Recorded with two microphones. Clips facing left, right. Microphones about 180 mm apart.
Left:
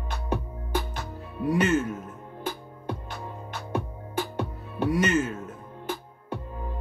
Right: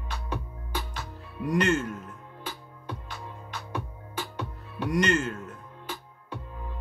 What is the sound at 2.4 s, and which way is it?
Music, 50° left (ahead or behind).